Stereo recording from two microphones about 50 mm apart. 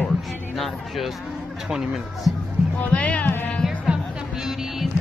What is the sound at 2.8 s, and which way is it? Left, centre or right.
Speech, left.